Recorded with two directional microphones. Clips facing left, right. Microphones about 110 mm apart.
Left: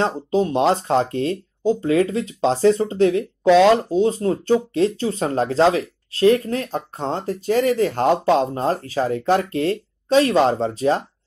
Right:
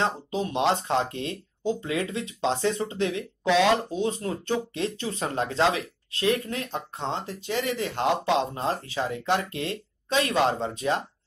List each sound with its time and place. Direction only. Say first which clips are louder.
0.0 s speech: left 7 dB; 35° left (ahead or behind)